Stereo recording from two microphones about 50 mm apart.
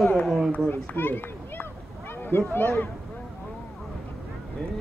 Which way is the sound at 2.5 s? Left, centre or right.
Left.